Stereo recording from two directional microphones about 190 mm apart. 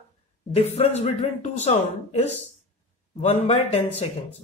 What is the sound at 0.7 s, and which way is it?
Speech, 35° left (ahead or behind).